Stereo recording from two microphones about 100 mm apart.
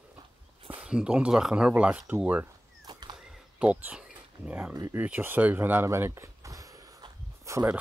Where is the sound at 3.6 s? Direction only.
15° right (ahead or behind).